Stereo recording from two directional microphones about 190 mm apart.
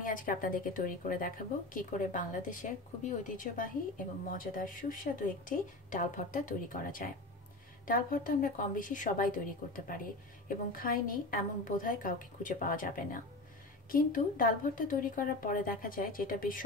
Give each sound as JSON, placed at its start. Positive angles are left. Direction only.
{"t": 0.0, "sound": "a woman's voice", "side_deg": 45}